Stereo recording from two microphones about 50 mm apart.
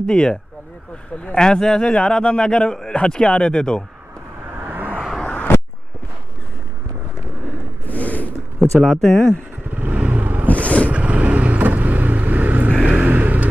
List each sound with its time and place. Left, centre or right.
0.0 s a man's voice: centre
4.6 s vehicle: right
5.2 s a sound: left
7.8 s a sound: left
8.5 s speech: centre
9.7 s vehicle: right
10.5 s vehicle: left
10.9 s vehicle: right